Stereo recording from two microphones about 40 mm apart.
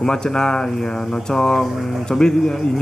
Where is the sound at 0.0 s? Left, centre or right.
Centre.